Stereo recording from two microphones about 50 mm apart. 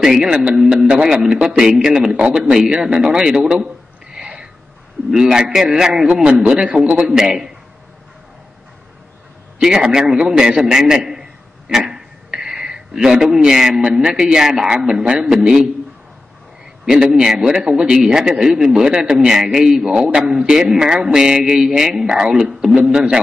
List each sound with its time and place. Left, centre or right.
0.0 s a man's voice: centre
3.6 s a sound: centre
5.1 s a man's voice: centre
9.6 s a man's voice: centre
16.8 s a man's voice: centre